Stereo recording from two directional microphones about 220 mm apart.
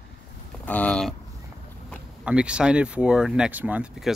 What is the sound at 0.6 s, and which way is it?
Speech, 5° left (ahead or behind).